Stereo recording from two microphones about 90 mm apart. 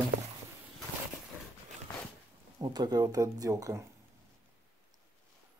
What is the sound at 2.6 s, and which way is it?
Speech, 50° right (ahead or behind).